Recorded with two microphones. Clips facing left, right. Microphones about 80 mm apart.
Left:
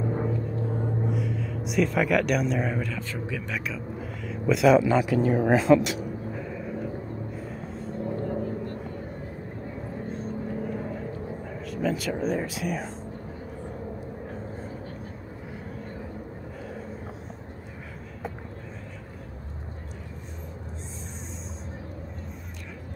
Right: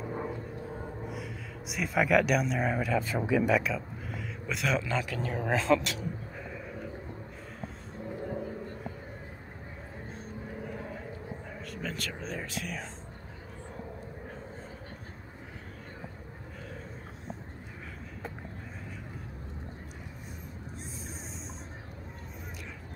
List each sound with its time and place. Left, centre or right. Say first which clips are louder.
1.1 s speech: left 10 dB; centre
3.5 s a sound: right 3 dB; centre
4.7 s speech: left 11 dB; centre
11.7 s speech: left 11 dB; centre